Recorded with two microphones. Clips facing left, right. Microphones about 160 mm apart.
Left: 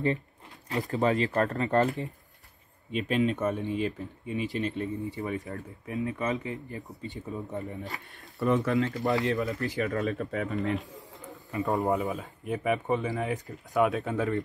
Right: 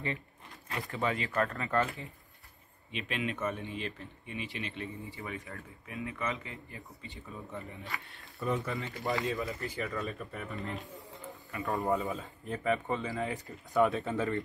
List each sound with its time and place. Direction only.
0.7 s speech: 20° left (ahead or behind)
0.9 s speech: 40° left (ahead or behind)
5.9 s speech: 25° left (ahead or behind)
8.4 s speech: 80° left
11.5 s speech: 20° left (ahead or behind)
13.8 s speech: centre (ahead or behind)